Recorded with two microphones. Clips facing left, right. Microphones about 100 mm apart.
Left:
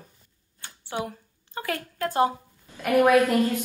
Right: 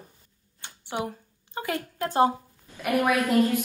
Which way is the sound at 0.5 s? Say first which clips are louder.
Even; 20° right (ahead or behind).